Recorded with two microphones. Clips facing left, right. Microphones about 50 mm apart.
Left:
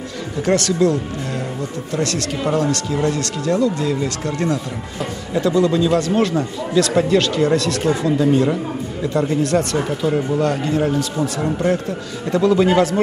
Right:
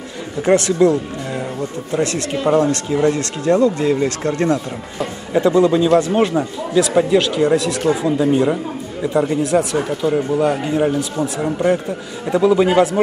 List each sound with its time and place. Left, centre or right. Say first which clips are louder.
0.4 s speech: right 3 dB; right
5.3 s a man's voice: right 3 dB; right; by 10.4 s centre
10.4 s a man's voice: right 2 dB; centre